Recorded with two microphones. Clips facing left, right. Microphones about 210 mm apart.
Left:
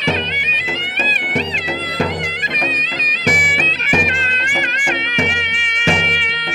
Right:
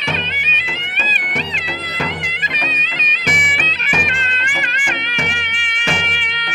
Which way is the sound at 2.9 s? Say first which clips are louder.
Left 4 dB; 40° left (ahead or behind).